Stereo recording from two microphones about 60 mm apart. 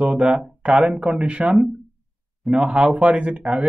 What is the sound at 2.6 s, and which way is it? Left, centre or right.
Speech, centre.